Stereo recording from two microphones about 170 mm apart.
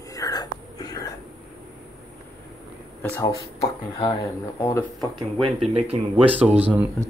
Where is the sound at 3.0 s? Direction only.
15° left (ahead or behind).